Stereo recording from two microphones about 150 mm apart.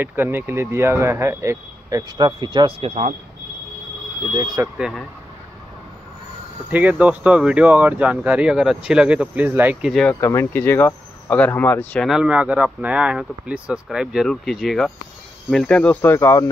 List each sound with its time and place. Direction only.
0.0 s speech: 15° right (ahead or behind); by 2.9 s 35° right (ahead or behind)
2.9 s speech: 55° right (ahead or behind)
4.7 s speech: 5° right (ahead or behind)
6.7 s speech: 10° right (ahead or behind)
10.2 s speech: 15° left (ahead or behind)
12.1 s speech: 5° right (ahead or behind); by 16.4 s 20° left (ahead or behind)